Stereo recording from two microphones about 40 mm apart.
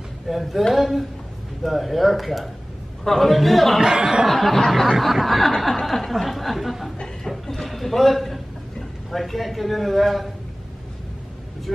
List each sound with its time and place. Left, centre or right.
0.3 s chuckle: centre
3.8 s speech: centre
4.3 s chuckle: centre
7.2 s a sound: centre
9.1 s chuckle: centre